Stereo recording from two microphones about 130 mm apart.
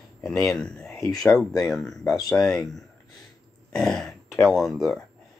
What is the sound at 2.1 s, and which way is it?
Speech, 5° left (ahead or behind).